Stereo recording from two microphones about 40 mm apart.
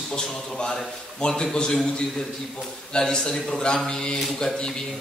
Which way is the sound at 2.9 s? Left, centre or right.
Centre.